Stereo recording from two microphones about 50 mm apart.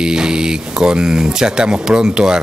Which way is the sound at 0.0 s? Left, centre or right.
Centre.